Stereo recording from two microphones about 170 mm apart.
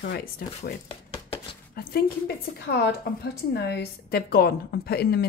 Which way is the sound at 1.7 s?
60° left (ahead or behind).